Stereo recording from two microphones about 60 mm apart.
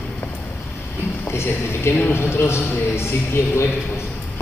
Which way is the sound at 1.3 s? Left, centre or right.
Left.